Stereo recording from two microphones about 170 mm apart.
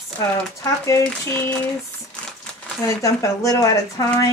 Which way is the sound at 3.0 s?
20° left (ahead or behind).